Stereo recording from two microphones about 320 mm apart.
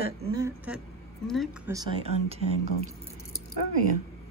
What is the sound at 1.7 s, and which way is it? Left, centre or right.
Speech, centre.